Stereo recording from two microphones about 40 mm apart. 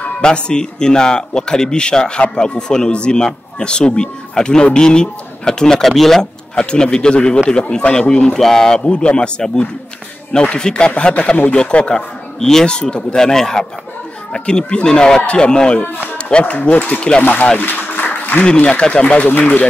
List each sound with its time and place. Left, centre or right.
0.2 s a man's voice: left; by 6.2 s centre
6.5 s a man's voice: left
8.6 s a man's voice: left
10.6 s a man's voice: left
11.9 s a man's voice: centre
16.5 s speech: left
17.6 s music: left
18.4 s a man's voice: left